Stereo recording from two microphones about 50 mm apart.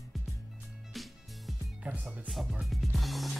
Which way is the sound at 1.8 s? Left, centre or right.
Right.